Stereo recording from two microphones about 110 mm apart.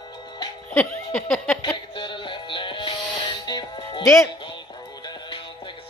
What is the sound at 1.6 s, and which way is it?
Music, 45° left (ahead or behind).